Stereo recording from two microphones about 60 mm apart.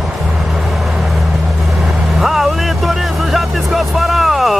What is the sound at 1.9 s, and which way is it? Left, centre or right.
Speech, centre.